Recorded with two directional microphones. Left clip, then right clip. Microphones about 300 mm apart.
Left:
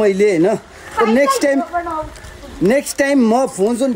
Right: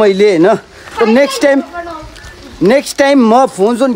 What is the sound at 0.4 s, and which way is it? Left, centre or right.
A man's voice, centre.